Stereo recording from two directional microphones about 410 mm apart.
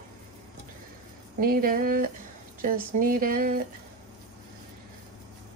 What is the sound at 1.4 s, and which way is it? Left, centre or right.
Speech, right.